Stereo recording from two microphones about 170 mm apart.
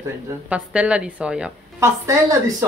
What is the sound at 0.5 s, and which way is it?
A woman's voice, 5° right (ahead or behind).